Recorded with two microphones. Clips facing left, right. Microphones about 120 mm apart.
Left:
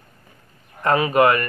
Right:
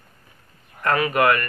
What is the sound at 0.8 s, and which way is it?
Speech, 25° left (ahead or behind).